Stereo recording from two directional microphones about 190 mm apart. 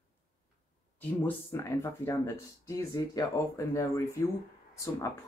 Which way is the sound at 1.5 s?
10° left (ahead or behind).